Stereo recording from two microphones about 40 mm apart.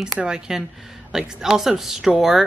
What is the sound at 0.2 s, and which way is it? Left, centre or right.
Speech, centre.